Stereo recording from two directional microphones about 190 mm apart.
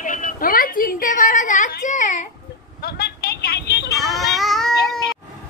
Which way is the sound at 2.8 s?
55° left (ahead or behind).